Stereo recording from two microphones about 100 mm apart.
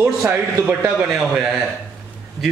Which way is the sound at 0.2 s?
25° right (ahead or behind).